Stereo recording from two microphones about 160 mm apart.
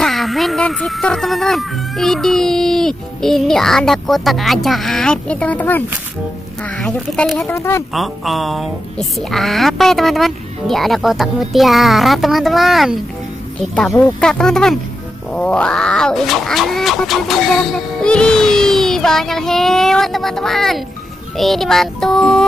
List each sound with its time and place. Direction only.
0.0 s speech: centre (ahead or behind)
7.5 s speech: 15° left (ahead or behind)
7.9 s speech: centre (ahead or behind)